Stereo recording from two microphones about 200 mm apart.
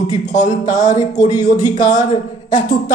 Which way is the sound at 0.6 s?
20° left (ahead or behind).